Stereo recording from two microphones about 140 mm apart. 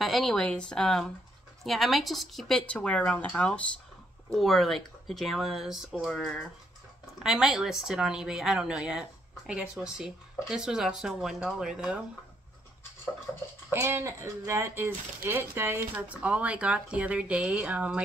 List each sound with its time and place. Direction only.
0.0 s speech: centre (ahead or behind)
13.7 s speech: 15° right (ahead or behind)